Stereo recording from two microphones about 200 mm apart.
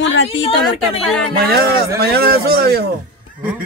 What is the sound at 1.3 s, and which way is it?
Speech, 50° right (ahead or behind).